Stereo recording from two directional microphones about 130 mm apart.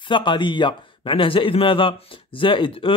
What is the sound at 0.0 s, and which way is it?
A man's voice, 40° left (ahead or behind).